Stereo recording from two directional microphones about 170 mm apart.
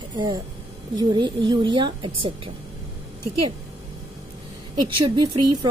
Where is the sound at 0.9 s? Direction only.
25° right (ahead or behind).